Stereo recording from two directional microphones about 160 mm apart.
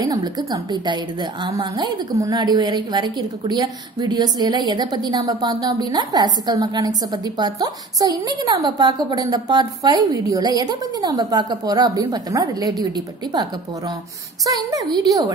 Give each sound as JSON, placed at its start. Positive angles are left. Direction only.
{"t": 0.0, "sound": "a woman's voice", "side_deg": -25}